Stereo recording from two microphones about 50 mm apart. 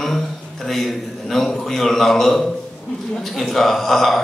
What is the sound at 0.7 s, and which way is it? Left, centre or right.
A man's voice, centre.